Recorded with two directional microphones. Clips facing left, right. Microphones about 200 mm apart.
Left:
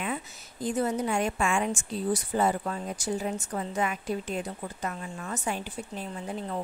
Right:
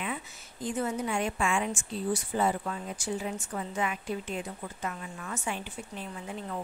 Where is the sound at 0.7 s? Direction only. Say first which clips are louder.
Left 3 dB; 35° left (ahead or behind).